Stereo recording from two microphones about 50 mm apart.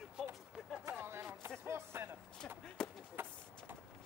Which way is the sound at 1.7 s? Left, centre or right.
Right.